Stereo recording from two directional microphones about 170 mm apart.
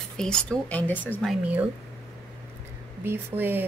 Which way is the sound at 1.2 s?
5° right (ahead or behind).